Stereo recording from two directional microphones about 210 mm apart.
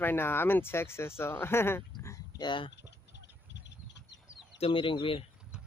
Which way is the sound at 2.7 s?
55° left (ahead or behind).